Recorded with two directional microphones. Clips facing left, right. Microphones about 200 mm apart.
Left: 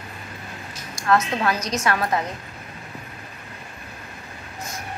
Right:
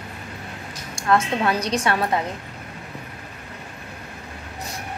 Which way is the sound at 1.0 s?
25° right (ahead or behind).